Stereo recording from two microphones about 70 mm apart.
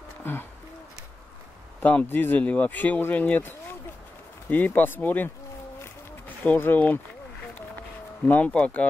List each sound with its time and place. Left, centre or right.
0.2 s speech: left
1.8 s speech: left
8.5 s speech: centre